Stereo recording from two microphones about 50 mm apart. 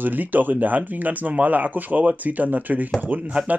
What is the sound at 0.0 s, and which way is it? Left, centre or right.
Speech, right.